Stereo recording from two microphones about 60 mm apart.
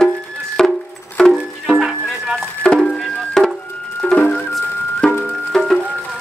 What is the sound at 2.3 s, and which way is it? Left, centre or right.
Music, centre.